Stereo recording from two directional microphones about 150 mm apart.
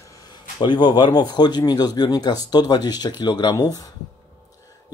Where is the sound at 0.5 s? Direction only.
30° left (ahead or behind).